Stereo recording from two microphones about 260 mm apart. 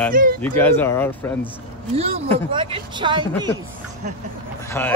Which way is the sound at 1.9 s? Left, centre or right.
Right.